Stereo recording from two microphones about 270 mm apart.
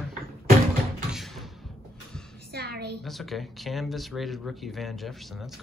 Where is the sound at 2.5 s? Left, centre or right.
Right.